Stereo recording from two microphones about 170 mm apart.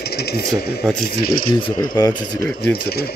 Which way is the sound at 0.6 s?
70° left (ahead or behind).